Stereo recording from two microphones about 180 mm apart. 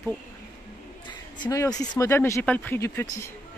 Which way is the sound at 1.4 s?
20° left (ahead or behind).